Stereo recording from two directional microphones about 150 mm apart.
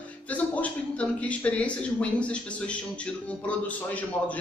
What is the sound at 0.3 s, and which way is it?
A man's voice, 10° left (ahead or behind).